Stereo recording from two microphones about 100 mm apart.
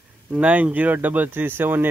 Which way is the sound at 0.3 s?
10° right (ahead or behind).